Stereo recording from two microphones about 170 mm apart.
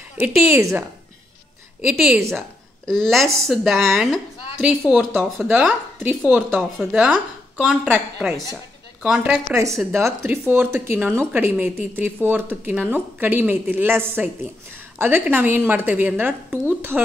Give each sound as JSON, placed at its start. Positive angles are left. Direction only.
{"t": 0.5, "sound": "speech", "side_deg": -15}
{"t": 1.9, "sound": "a woman's voice", "side_deg": 0}